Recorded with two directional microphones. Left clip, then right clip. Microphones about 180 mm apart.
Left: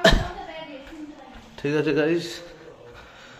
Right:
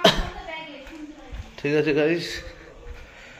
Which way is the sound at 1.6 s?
5° left (ahead or behind).